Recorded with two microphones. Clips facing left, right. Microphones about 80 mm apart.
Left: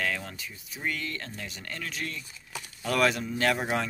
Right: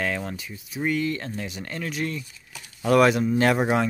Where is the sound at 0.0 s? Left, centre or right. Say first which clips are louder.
Right 4 dB; centre.